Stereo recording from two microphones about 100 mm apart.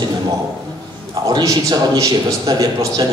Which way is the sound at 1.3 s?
40° right (ahead or behind).